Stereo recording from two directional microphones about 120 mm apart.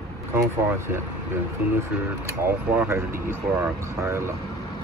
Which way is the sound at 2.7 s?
20° right (ahead or behind).